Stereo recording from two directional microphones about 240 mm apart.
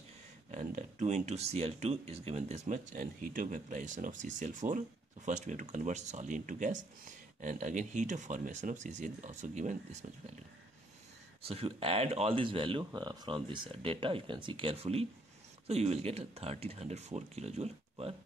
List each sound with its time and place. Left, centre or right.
0.5 s speech: right
11.4 s speech: right